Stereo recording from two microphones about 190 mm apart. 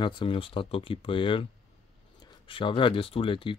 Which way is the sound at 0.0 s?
25° left (ahead or behind).